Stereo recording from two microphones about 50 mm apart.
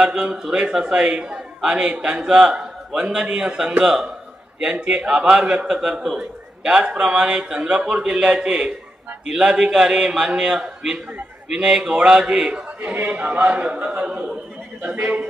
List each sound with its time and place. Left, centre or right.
0.0 s a man's voice: centre
12.4 s speech: right
12.9 s speech: right
14.9 s a man's voice: right